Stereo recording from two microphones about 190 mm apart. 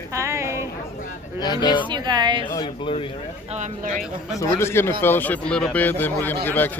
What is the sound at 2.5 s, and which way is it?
Speech, 25° left (ahead or behind).